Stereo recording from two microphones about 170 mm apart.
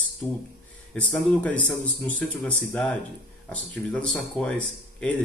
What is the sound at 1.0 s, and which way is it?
Speech, 10° left (ahead or behind).